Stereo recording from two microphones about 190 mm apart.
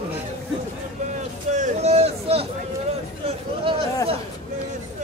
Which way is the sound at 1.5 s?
35° right (ahead or behind).